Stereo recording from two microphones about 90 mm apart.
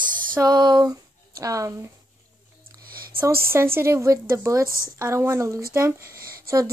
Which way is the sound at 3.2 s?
30° right (ahead or behind).